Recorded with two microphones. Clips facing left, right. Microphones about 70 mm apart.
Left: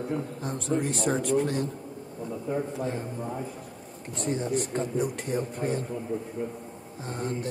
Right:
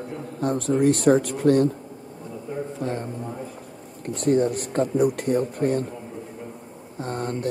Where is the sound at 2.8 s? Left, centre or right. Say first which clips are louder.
Right 3 dB; centre.